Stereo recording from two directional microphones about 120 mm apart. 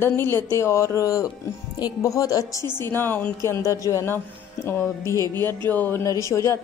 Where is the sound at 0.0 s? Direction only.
20° left (ahead or behind).